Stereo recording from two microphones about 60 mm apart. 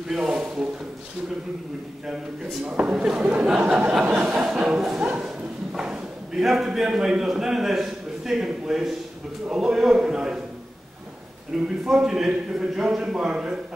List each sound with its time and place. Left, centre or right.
0.1 s a man's voice: centre
2.6 s a man's voice: centre
3.3 s a sound: right
4.5 s a man's voice: centre
5.2 s a sound: centre
6.4 s a man's voice: centre
11.6 s a man's voice: centre